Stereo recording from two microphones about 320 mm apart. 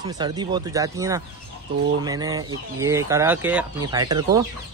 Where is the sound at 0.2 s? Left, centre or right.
Centre.